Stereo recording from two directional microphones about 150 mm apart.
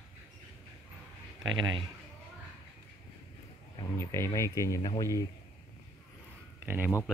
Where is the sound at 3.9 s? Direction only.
15° left (ahead or behind).